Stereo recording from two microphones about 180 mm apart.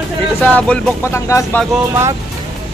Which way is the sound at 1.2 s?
15° left (ahead or behind).